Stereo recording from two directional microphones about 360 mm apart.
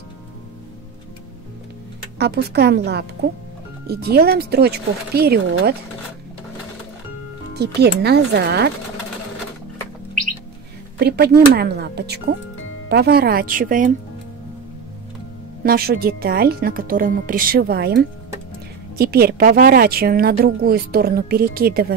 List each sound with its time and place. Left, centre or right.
2.1 s a woman's voice: right
7.5 s a woman's voice: right
11.0 s a woman's voice: right
15.6 s a woman's voice: right